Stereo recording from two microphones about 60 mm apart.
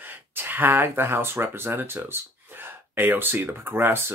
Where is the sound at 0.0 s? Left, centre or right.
Right.